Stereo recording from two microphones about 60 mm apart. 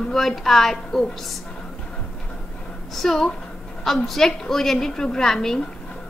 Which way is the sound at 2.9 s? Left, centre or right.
Centre.